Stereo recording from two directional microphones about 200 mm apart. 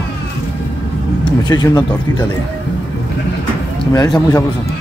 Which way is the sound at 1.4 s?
20° left (ahead or behind).